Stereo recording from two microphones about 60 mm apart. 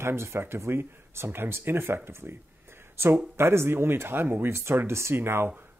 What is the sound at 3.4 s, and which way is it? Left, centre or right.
Speech, right.